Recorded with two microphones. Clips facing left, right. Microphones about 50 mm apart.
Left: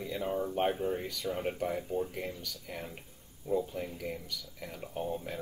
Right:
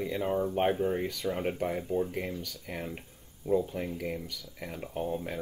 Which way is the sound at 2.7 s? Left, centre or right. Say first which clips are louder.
Right 5 dB; right.